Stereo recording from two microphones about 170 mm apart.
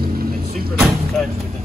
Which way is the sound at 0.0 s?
60° right (ahead or behind).